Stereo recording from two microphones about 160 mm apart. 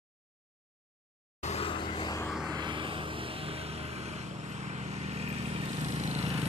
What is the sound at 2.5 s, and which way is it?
Vehicle, 30° right (ahead or behind).